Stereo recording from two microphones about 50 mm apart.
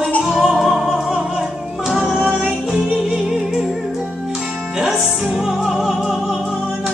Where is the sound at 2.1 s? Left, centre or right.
Right.